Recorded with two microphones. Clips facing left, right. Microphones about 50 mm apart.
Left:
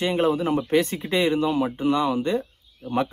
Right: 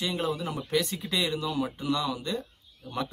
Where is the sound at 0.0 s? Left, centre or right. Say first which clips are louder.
Left 8 dB; left.